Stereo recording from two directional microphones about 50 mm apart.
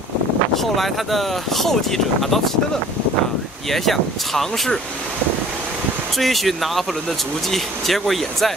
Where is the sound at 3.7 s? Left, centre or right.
Centre.